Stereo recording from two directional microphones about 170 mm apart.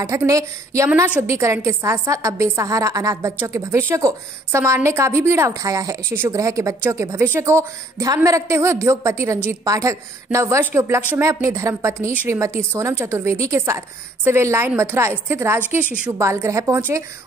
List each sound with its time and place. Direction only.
0.0 s a woman's voice: 15° right (ahead or behind)